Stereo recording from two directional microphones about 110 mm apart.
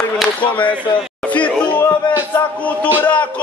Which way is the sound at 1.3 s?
10° left (ahead or behind).